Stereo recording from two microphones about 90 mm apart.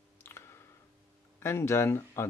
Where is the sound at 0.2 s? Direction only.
30° left (ahead or behind).